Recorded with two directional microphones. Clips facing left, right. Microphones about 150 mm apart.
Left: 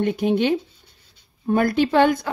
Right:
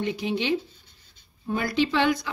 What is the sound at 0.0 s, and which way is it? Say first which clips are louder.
Speech: left 7 dB; 55° left (ahead or behind).